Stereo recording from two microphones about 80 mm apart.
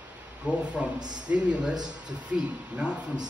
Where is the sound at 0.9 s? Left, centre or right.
Right.